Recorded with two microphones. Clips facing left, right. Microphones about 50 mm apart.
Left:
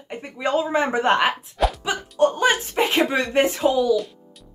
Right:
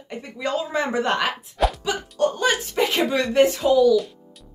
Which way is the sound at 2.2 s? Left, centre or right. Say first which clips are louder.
Left 3 dB; left.